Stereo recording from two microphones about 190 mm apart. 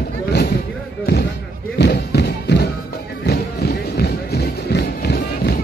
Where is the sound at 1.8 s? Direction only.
60° left (ahead or behind).